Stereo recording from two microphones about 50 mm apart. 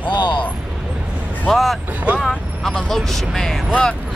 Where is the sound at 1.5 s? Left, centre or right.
Centre.